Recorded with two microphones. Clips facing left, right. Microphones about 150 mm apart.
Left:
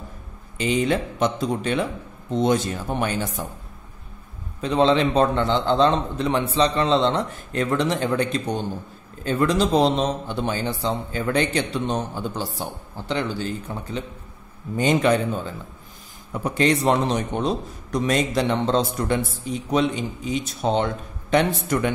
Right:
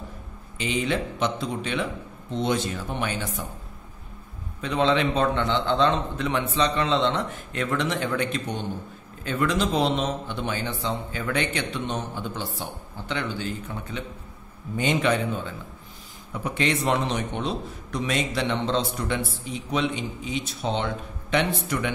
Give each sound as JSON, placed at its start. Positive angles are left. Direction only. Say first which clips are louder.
{"t": 0.6, "sound": "a man's voice", "louder": "left 5 dB", "side_deg": 40}
{"t": 4.6, "sound": "a man's voice", "louder": "left 4 dB", "side_deg": 35}